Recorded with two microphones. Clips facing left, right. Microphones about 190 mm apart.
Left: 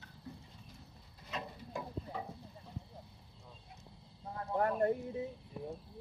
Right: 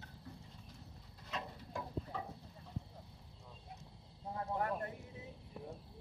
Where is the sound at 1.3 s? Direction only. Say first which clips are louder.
Left 2 dB; 10° left (ahead or behind).